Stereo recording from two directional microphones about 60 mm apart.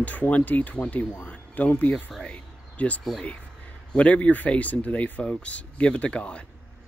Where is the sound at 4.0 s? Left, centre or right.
Left.